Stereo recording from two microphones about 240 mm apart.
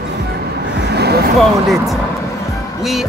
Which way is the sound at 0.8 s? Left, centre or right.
Right.